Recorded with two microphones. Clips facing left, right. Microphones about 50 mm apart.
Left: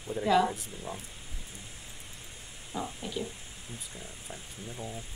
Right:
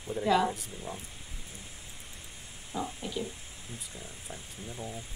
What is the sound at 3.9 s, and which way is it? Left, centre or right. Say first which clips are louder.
Speech: even; left.